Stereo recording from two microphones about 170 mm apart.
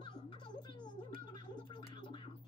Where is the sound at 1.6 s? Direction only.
25° left (ahead or behind).